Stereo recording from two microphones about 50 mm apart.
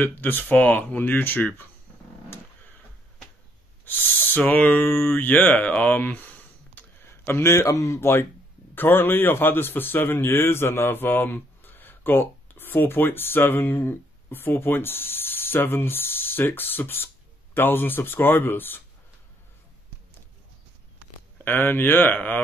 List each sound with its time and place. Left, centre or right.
0.0 s speech: left
3.8 s speech: left
5.6 s speech: left
7.2 s speech: left
8.7 s a man's voice: left
21.5 s speech: left
22.1 s speech: left